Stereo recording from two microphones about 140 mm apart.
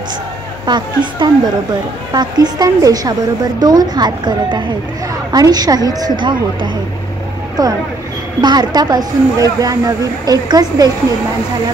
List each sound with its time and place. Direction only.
0.7 s a woman's voice: 30° right (ahead or behind)